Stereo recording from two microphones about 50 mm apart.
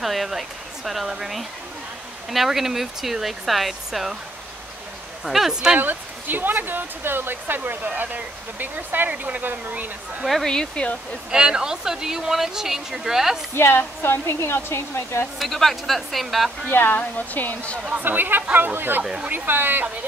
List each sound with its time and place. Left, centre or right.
0.0 s speech: centre
5.2 s speech: centre
5.5 s speech: centre
5.8 s speech: right
10.4 s speech: centre
11.3 s speech: centre
13.6 s speech: left
15.3 s speech: centre
16.7 s speech: left
17.8 s speech: right